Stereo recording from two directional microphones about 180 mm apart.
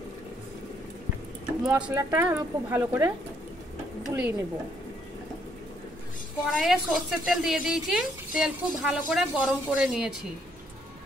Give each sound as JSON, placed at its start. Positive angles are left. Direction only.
{"t": 1.6, "sound": "speech", "side_deg": -5}
{"t": 4.1, "sound": "speech", "side_deg": -15}
{"t": 6.5, "sound": "speech", "side_deg": 0}